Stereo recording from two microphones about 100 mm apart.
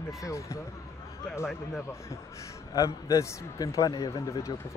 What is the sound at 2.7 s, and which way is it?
Speech, 35° left (ahead or behind).